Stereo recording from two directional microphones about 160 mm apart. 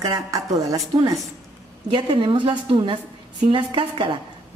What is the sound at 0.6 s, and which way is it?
A woman's voice, 20° right (ahead or behind).